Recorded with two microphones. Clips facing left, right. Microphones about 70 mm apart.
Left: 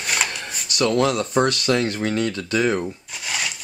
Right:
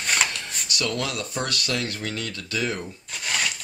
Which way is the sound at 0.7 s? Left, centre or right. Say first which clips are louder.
Left 9 dB; left.